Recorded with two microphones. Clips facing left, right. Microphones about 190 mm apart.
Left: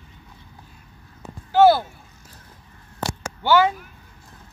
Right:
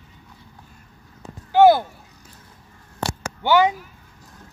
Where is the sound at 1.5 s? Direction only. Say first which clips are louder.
Right 1 dB; 15° right (ahead or behind).